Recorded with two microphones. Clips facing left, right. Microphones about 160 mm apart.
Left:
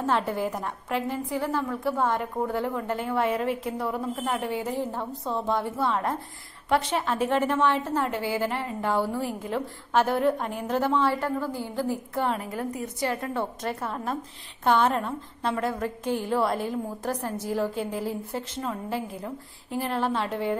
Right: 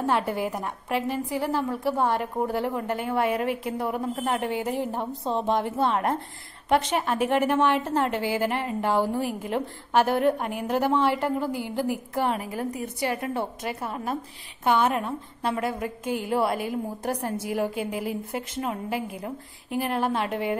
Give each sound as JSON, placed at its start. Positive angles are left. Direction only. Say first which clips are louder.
{"t": 0.0, "sound": "a woman's voice", "louder": "right 1 dB", "side_deg": -10}